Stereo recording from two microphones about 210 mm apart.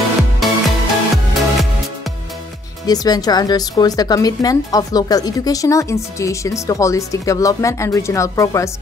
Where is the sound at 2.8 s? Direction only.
20° left (ahead or behind).